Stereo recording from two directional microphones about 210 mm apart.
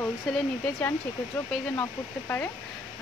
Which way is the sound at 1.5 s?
10° left (ahead or behind).